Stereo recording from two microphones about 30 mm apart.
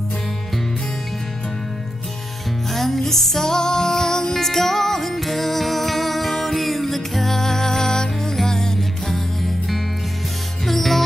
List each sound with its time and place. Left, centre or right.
2.7 s music: centre